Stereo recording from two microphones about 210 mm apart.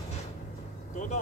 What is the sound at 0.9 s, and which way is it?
Vehicle, 35° left (ahead or behind).